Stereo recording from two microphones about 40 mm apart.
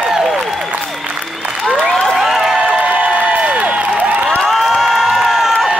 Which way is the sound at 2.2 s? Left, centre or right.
Centre.